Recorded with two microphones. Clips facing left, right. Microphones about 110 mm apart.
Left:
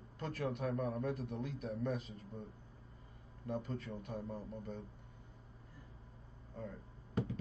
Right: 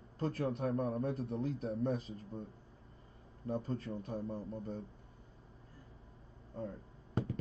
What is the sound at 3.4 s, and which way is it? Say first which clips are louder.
Speech: right 3 dB; 35° right (ahead or behind).